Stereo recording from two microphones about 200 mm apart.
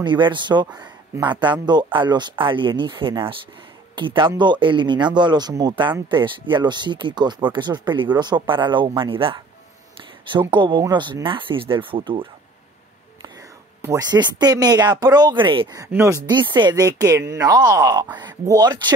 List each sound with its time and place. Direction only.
0.0 s speech: 25° right (ahead or behind)
10.4 s speech: 25° right (ahead or behind)
13.7 s speech: 15° right (ahead or behind)